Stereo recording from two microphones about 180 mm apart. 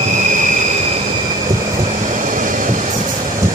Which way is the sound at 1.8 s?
45° right (ahead or behind).